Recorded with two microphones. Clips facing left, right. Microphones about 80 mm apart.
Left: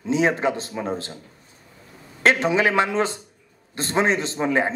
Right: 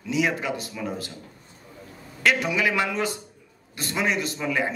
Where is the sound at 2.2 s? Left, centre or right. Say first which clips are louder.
Left 4 dB; left.